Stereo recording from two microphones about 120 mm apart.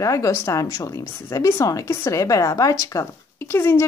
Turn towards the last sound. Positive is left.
turn(degrees=20)  # may be behind; listen again after turning